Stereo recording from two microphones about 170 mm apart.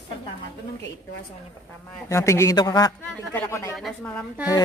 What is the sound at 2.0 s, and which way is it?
A man's voice, 15° left (ahead or behind).